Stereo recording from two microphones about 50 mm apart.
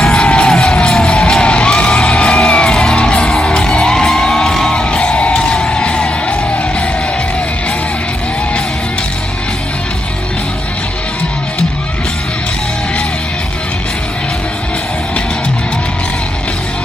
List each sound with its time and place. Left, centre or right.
0.1 s music: left